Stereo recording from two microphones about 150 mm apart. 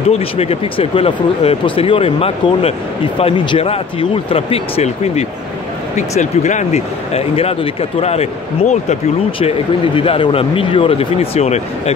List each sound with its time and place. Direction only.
0.1 s speech: 40° left (ahead or behind)
9.9 s speech: 35° left (ahead or behind)